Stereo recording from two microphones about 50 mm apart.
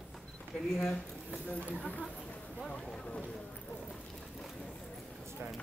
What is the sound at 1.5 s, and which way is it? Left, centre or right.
Speech, left.